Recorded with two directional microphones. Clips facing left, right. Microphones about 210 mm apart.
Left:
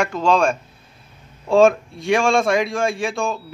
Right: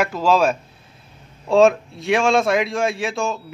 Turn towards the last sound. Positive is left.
turn(degrees=0)  # may be behind; listen again after turning